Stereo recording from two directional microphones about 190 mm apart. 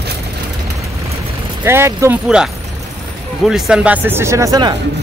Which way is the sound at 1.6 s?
15° right (ahead or behind).